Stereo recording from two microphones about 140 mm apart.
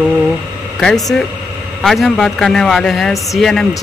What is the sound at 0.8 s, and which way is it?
A man's voice, centre (ahead or behind).